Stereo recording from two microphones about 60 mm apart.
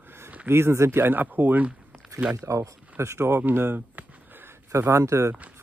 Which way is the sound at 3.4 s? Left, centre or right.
Right.